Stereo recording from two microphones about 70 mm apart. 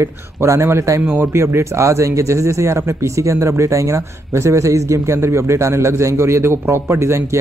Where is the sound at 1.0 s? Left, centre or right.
Right.